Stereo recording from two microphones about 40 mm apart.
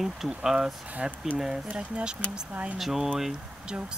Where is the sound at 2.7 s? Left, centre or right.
Centre.